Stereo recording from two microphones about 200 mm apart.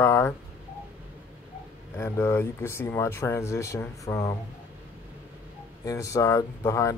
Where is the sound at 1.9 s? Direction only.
10° left (ahead or behind).